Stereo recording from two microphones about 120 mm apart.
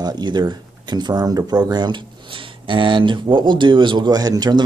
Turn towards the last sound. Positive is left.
turn(degrees=-35)  # may be behind; listen again after turning